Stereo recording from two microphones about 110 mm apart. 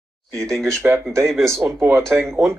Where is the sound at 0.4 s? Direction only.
5° left (ahead or behind).